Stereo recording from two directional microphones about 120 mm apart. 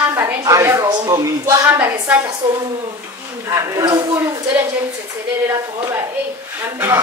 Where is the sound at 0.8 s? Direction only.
30° right (ahead or behind).